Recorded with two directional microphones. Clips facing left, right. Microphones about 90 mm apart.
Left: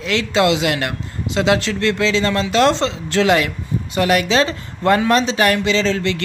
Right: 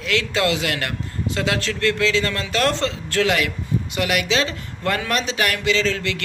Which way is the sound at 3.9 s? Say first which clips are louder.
Left 6 dB; 35° left (ahead or behind).